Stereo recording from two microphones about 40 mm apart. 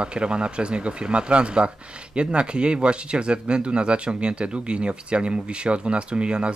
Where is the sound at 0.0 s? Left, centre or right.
Right.